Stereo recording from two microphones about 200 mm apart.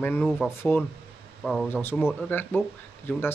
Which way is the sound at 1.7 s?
10° left (ahead or behind).